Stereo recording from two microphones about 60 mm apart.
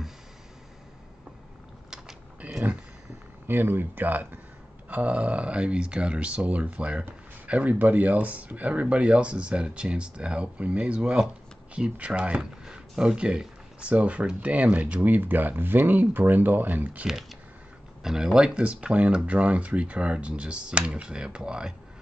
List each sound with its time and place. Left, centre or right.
2.4 s wild animals: right
3.4 s speech: right
15.0 s speech: right
17.0 s speech: centre